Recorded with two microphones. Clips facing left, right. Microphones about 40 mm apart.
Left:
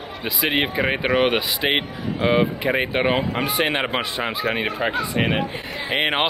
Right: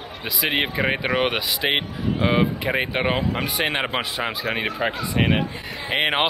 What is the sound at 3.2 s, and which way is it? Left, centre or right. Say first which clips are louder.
Speech: left 2 dB; centre.